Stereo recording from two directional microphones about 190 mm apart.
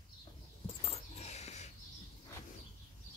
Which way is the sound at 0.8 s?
35° left (ahead or behind).